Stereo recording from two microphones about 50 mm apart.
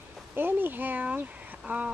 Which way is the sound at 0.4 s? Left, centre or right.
Right.